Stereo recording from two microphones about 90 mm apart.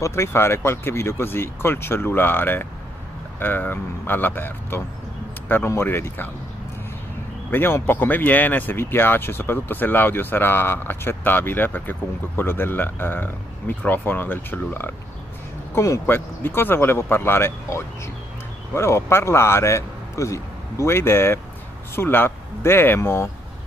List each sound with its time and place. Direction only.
0.0 s speech: 30° left (ahead or behind)
7.5 s a man's voice: 25° left (ahead or behind)